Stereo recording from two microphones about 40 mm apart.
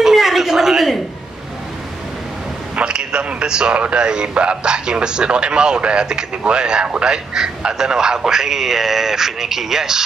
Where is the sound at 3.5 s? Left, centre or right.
Right.